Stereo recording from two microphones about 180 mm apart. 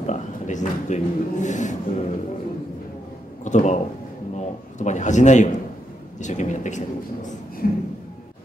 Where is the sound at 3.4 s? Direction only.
40° left (ahead or behind).